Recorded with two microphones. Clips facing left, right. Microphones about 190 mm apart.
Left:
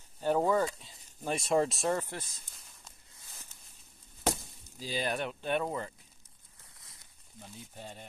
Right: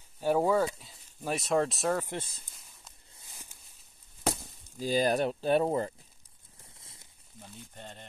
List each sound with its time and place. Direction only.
0.2 s speech: 10° right (ahead or behind)
2.0 s speech: 25° right (ahead or behind)
4.7 s speech: 45° right (ahead or behind)
6.6 s a sound: 25° right (ahead or behind)
7.3 s speech: centre (ahead or behind)